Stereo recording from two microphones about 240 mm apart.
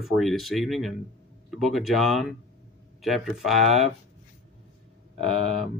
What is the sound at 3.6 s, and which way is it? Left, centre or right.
Speech, right.